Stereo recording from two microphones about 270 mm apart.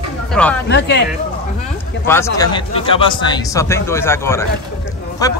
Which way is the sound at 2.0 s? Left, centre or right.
Centre.